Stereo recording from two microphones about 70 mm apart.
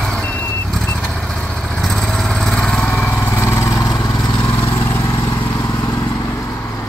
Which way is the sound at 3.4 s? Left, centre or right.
Left.